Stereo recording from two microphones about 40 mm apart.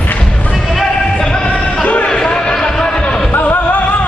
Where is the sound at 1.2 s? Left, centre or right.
Left.